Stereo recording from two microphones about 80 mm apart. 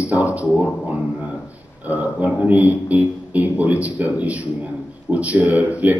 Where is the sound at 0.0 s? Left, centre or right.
Centre.